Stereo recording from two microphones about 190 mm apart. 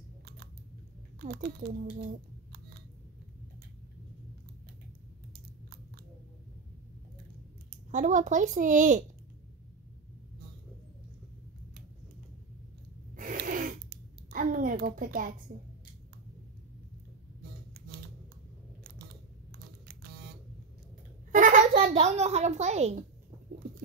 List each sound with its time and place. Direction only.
1.2 s speech: 50° right (ahead or behind)
7.9 s speech: 40° right (ahead or behind)
13.1 s a sound: 45° right (ahead or behind)
17.7 s music: 55° right (ahead or behind)
19.5 s computer keyboard: 55° right (ahead or behind)
21.3 s a child's voice: 45° right (ahead or behind)